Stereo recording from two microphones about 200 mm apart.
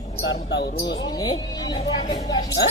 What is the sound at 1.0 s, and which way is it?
Speech, 20° left (ahead or behind).